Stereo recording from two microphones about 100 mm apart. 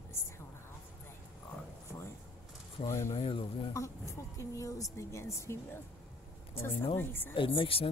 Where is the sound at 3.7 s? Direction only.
30° left (ahead or behind).